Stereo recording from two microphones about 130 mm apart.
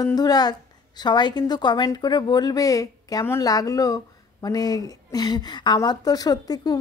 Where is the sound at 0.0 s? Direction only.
30° left (ahead or behind).